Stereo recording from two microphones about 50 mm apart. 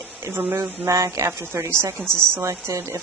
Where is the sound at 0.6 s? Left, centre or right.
Right.